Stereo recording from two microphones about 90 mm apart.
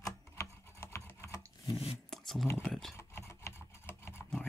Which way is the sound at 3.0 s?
30° left (ahead or behind).